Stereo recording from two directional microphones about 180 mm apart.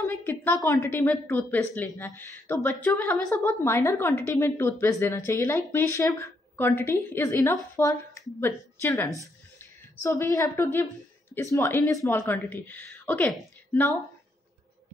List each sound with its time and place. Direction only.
0.0 s a woman's voice: 10° left (ahead or behind)